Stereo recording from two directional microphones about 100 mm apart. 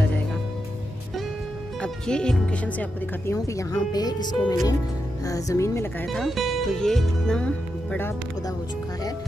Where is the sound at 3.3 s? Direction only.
35° left (ahead or behind).